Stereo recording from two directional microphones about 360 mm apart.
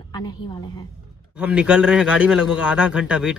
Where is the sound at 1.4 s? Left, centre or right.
Centre.